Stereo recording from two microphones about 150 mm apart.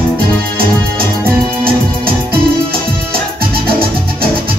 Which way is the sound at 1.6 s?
85° right.